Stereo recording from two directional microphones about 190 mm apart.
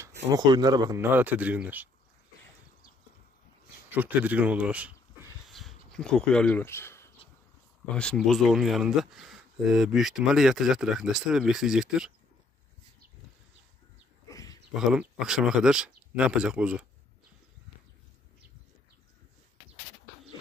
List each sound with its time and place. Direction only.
0.0 s speech: 20° right (ahead or behind)
3.9 s speech: 10° right (ahead or behind)
14.2 s a sound: 15° left (ahead or behind)
14.7 s speech: 5° right (ahead or behind)